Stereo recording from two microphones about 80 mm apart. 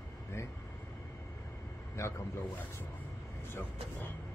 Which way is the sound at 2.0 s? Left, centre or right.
Left.